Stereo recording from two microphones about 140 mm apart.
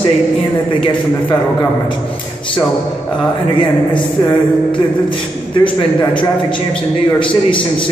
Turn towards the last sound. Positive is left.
turn(degrees=35)  # may be behind; listen again after turning